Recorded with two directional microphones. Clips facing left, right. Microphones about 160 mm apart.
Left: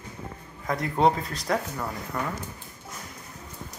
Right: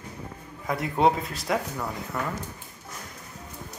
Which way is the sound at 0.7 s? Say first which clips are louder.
Even; 5° right (ahead or behind).